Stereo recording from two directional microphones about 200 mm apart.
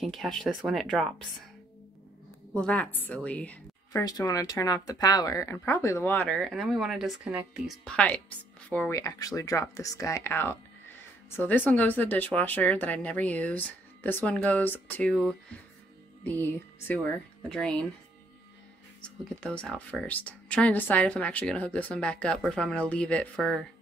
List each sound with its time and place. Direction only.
0.0 s a woman's voice: centre (ahead or behind)
2.5 s speech: 5° left (ahead or behind)
4.0 s a woman's voice: 20° left (ahead or behind)
18.9 s a woman's voice: 5° left (ahead or behind)